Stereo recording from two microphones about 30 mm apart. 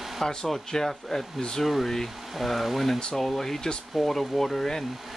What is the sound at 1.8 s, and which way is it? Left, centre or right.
Speech, centre.